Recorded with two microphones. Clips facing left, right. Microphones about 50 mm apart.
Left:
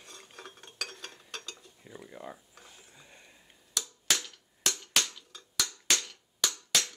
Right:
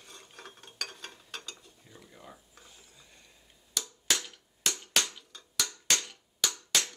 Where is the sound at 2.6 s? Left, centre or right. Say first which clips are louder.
Left 2 dB; centre.